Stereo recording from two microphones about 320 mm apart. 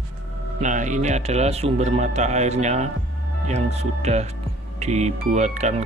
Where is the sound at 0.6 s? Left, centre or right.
Right.